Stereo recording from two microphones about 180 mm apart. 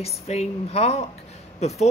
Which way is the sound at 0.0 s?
35° left (ahead or behind).